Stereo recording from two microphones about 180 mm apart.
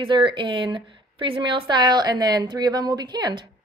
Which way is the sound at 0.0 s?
25° right (ahead or behind).